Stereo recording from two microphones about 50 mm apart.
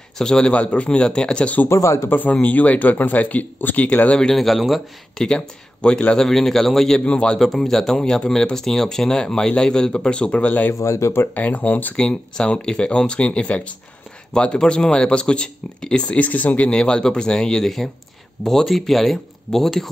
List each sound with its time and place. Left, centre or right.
0.2 s speech: centre
1.7 s speech: left
2.0 s speech: left
4.4 s speech: centre
5.1 s speech: centre
7.1 s speech: centre
7.3 s speech: centre; by 10.7 s left
10.7 s speech: left
11.3 s speech: left
12.0 s speech: centre